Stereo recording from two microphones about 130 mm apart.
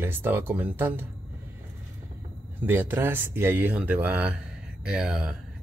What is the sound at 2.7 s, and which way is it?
Speech, 15° right (ahead or behind).